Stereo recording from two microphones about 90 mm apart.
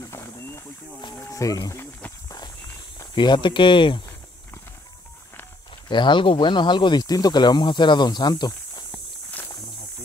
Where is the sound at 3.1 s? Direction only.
60° left (ahead or behind).